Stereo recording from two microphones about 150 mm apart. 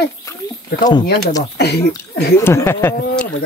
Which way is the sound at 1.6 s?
90° left.